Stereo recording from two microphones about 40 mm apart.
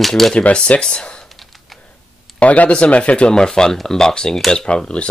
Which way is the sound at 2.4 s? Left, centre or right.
Left.